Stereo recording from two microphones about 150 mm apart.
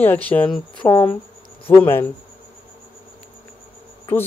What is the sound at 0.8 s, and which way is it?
Speech, 30° left (ahead or behind).